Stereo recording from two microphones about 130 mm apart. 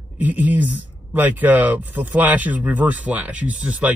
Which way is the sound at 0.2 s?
15° right (ahead or behind).